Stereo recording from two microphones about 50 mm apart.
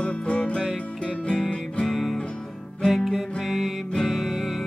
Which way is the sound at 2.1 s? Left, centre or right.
Centre.